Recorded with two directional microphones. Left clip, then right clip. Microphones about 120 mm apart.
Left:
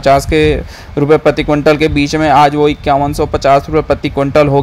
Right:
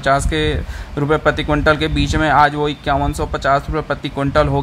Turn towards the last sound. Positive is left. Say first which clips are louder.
# left 6 dB
turn(degrees=30)  # may be behind; listen again after turning